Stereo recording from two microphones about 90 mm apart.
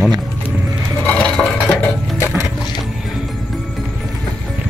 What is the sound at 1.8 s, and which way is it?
Music, 25° left (ahead or behind).